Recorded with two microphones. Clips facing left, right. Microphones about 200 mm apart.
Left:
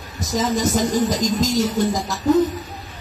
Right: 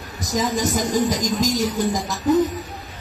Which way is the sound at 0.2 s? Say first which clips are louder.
Left 2 dB; 15° right (ahead or behind).